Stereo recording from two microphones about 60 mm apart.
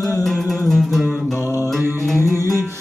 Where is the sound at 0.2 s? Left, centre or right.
Centre.